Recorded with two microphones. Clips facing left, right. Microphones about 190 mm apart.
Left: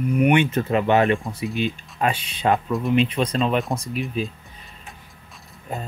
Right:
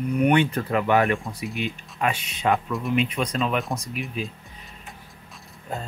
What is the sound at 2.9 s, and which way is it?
Speech, 30° left (ahead or behind).